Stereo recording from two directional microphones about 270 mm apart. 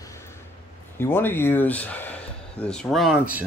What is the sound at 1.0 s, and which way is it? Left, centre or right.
Speech, centre.